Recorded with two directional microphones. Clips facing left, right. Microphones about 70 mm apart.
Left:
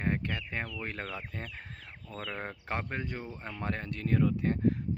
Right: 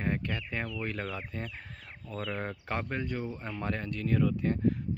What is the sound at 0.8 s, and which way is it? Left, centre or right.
Speech, left.